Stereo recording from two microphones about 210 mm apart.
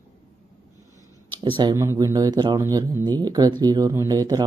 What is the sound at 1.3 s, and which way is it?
Speech, 25° right (ahead or behind).